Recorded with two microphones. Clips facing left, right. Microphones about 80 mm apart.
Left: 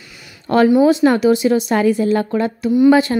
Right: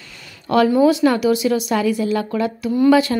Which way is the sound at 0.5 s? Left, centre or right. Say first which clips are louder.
Left 2 dB; left.